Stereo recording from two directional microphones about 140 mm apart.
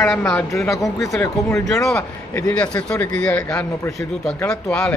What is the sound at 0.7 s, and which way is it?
Speech, 25° left (ahead or behind).